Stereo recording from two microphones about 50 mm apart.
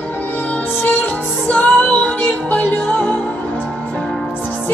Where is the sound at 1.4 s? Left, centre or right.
Left.